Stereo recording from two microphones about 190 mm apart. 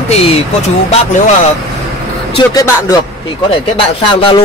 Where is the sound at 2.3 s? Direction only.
20° left (ahead or behind).